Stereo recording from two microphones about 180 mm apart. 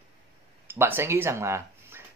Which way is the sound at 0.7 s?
10° right (ahead or behind).